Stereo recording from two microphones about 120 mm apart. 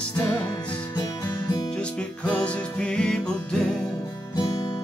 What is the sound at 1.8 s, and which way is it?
Music, 10° left (ahead or behind).